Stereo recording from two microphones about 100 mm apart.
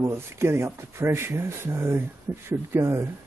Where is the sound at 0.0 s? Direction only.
25° right (ahead or behind).